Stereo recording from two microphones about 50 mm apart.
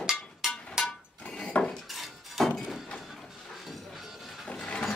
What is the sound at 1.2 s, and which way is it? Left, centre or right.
Dishes, left.